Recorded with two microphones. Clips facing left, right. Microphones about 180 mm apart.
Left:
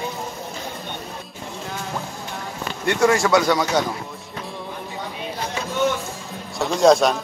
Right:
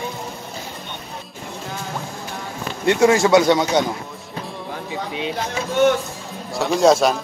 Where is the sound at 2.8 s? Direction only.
20° right (ahead or behind).